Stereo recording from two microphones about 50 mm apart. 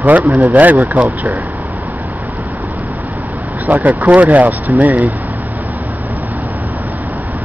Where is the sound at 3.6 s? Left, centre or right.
Right.